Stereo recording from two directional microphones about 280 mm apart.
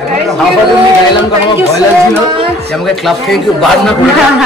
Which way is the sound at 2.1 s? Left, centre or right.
Centre.